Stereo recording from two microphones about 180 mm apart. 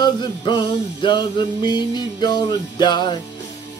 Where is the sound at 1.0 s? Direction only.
25° left (ahead or behind).